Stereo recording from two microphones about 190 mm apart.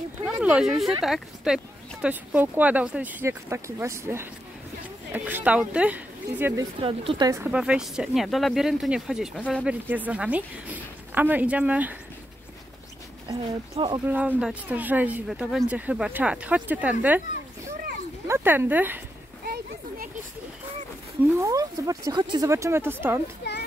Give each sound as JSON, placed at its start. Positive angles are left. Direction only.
{"t": 0.4, "sound": "speech", "side_deg": -5}
{"t": 7.5, "sound": "speech", "side_deg": -5}
{"t": 13.3, "sound": "speech", "side_deg": -25}
{"t": 14.0, "sound": "speech", "side_deg": -10}
{"t": 18.2, "sound": "speech", "side_deg": -10}
{"t": 19.4, "sound": "children playing", "side_deg": -50}
{"t": 21.3, "sound": "speech", "side_deg": -15}